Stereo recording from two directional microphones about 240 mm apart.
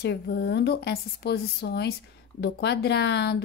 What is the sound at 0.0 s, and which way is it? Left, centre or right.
Speech, left.